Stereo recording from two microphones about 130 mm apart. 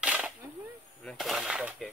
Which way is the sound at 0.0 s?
10° right (ahead or behind).